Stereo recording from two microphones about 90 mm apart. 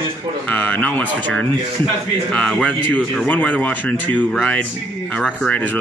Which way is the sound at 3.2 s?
15° left (ahead or behind).